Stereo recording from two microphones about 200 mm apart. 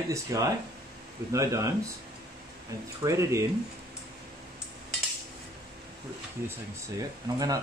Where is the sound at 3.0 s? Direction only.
15° right (ahead or behind).